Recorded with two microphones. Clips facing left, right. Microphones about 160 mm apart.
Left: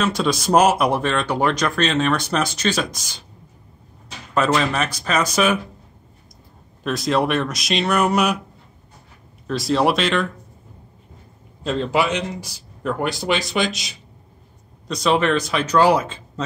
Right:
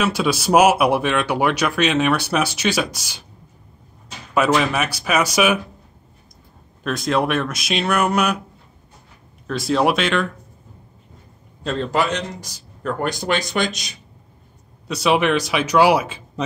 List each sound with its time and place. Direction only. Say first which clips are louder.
0.0 s speech: right 1 dB; 5° right (ahead or behind)
4.3 s speech: right 1 dB; 10° right (ahead or behind)
6.8 s a man's voice: even; centre (ahead or behind)
9.5 s a man's voice: even; centre (ahead or behind)
11.6 s a man's voice: left 1 dB; 5° left (ahead or behind)
14.9 s speech: right 1 dB; 10° right (ahead or behind)